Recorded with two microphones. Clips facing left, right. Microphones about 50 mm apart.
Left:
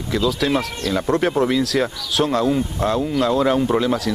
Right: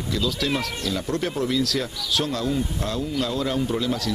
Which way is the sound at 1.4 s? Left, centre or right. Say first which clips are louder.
Left 6 dB; left.